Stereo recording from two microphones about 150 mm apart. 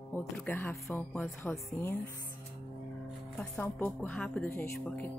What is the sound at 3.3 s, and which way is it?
Speech, 10° left (ahead or behind).